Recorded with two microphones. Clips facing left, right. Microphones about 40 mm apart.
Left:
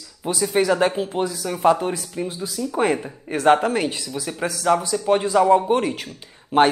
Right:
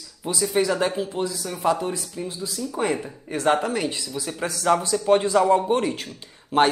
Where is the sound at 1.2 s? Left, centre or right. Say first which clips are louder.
Left 3 dB; left.